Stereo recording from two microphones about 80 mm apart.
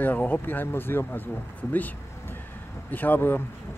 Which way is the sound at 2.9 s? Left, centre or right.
Left.